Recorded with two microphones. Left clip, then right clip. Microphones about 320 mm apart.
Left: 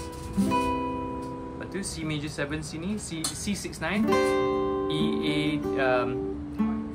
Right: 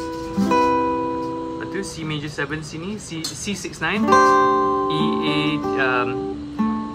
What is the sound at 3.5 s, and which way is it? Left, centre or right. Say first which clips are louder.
Speech: right 9 dB; centre.